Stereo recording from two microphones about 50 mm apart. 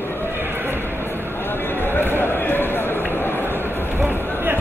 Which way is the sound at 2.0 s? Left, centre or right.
Left.